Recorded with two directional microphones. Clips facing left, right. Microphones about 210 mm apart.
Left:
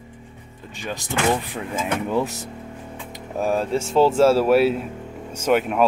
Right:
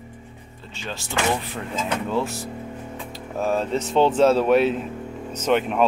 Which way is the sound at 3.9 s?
5° left (ahead or behind).